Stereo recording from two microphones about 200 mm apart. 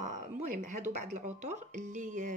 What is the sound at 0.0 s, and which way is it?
Speech, 35° right (ahead or behind).